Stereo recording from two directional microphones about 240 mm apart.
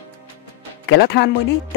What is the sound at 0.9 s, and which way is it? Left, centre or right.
Speech, left.